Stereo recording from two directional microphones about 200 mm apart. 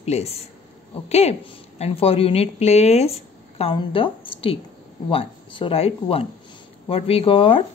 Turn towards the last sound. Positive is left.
turn(degrees=25)  # may be behind; listen again after turning